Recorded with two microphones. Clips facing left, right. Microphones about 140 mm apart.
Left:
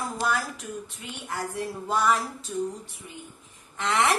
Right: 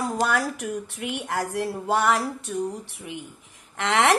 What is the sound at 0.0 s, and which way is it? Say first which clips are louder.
A woman's voice: right 4 dB; 70° right (ahead or behind).